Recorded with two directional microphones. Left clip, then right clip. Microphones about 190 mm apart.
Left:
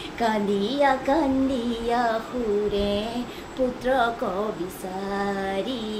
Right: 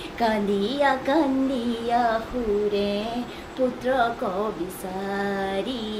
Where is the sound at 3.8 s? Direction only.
10° left (ahead or behind).